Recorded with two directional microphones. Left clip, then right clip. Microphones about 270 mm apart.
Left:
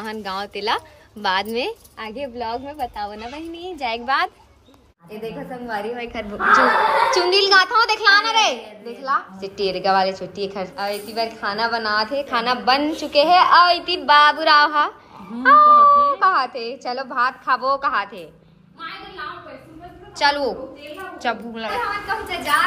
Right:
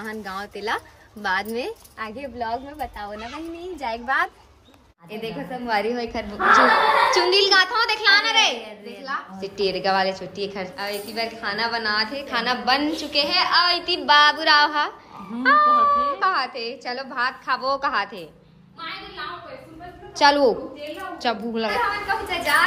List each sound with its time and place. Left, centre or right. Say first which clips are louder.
0.0 s a woman's voice: left 4 dB; centre
9.4 s a woman's voice: left 1 dB; centre
20.2 s a woman's voice: right 3 dB; right
21.7 s a woman's voice: left 2 dB; centre